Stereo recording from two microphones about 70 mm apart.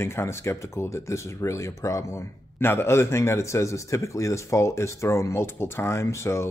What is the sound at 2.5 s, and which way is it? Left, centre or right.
A man's voice, left.